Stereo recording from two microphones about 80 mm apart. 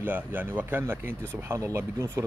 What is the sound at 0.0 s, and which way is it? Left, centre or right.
Speech, right.